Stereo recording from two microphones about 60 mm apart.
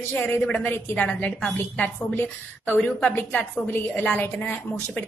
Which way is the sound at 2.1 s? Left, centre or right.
Left.